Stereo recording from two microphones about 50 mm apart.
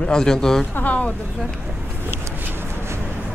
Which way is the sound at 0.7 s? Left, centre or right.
Left.